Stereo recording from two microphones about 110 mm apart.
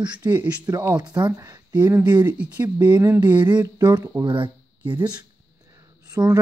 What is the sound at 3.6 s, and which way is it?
Speech, 40° right (ahead or behind).